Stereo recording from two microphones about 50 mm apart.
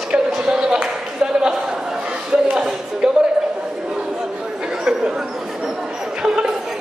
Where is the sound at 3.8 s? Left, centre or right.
Centre.